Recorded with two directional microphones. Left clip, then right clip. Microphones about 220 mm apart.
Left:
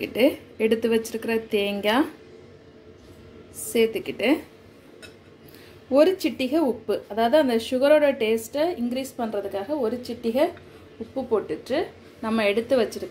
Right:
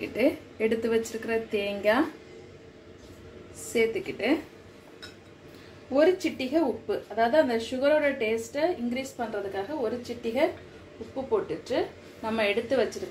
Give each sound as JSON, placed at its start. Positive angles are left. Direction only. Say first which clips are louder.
{"t": 0.0, "sound": "speech", "louder": "left 5 dB", "side_deg": 35}
{"t": 3.7, "sound": "speech", "louder": "left 4 dB", "side_deg": 45}
{"t": 5.9, "sound": "speech", "louder": "left 4 dB", "side_deg": 45}